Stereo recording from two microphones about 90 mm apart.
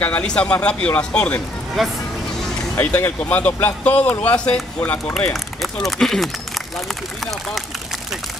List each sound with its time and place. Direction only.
0.0 s speech: 15° left (ahead or behind)
1.8 s speech: centre (ahead or behind)
2.8 s speech: 25° left (ahead or behind)
5.3 s speech: centre (ahead or behind)